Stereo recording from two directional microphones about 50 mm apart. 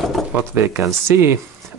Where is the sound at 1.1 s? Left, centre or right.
Right.